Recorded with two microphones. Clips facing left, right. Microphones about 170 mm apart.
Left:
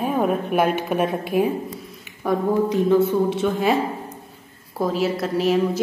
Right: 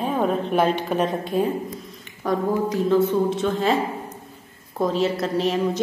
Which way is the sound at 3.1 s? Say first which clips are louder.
Left 1 dB; 10° left (ahead or behind).